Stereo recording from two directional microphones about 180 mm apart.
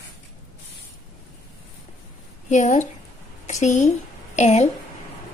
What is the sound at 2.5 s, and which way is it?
A woman's voice, 45° left (ahead or behind).